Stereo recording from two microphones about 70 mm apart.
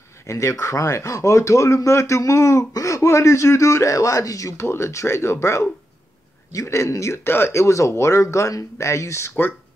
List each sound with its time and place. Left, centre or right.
0.3 s speech: left